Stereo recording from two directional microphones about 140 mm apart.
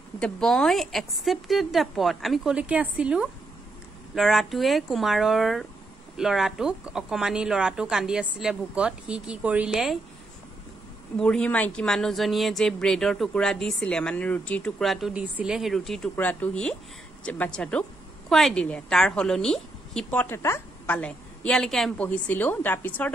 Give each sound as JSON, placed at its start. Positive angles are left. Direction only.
{"t": 0.2, "sound": "speech", "side_deg": 5}
{"t": 11.1, "sound": "speech", "side_deg": 5}
{"t": 16.2, "sound": "a woman's voice", "side_deg": 15}
{"t": 22.0, "sound": "a woman's voice", "side_deg": 10}